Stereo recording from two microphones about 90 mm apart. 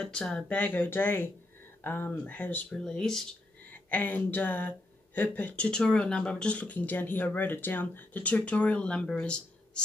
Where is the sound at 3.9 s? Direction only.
15° left (ahead or behind).